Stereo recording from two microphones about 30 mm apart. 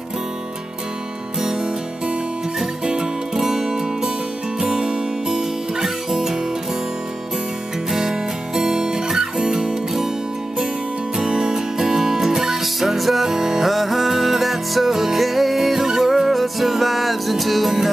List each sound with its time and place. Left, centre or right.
2.8 s music: right
7.9 s music: centre
11.2 s music: centre